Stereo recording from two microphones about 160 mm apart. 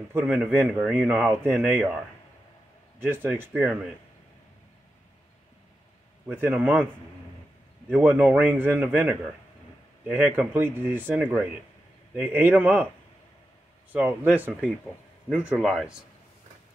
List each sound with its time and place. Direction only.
0.1 s speech: 10° right (ahead or behind)
3.0 s speech: 15° right (ahead or behind)
6.2 s speech: 10° right (ahead or behind)
7.9 s speech: 10° right (ahead or behind)
13.9 s a man's voice: 10° right (ahead or behind)